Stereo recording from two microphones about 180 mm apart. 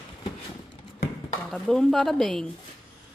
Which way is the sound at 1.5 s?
Centre (ahead or behind).